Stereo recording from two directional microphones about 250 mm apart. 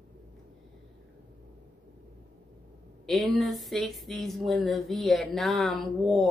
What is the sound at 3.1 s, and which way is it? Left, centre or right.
Speech, centre.